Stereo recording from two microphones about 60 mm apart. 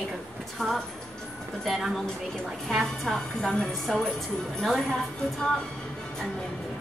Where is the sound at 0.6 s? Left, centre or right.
Centre.